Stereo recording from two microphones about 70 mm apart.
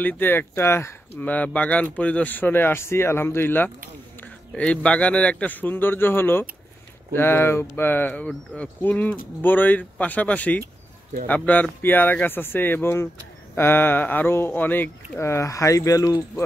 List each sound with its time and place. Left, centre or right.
0.0 s speech: left
1.2 s speech: left
4.6 s speech: centre
15.1 s speech: left